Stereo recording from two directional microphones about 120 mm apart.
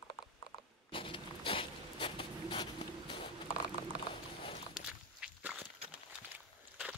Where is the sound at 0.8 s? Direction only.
45° left (ahead or behind).